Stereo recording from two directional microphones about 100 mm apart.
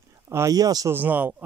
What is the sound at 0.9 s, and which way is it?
Speech, 15° right (ahead or behind).